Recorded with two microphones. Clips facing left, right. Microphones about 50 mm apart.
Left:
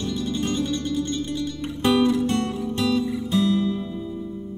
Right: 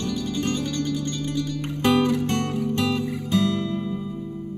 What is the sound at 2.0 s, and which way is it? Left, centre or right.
Music, right.